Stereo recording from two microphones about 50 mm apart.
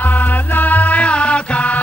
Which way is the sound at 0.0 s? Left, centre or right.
Left.